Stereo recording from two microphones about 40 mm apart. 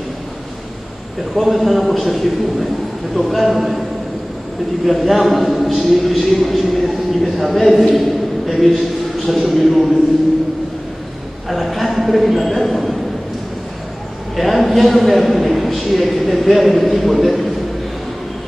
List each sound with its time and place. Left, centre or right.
1.3 s a man's voice: centre
4.8 s a man's voice: centre
11.4 s a man's voice: centre
14.3 s a man's voice: centre